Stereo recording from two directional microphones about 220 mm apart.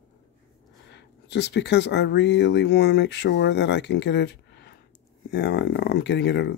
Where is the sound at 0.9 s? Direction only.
50° left (ahead or behind).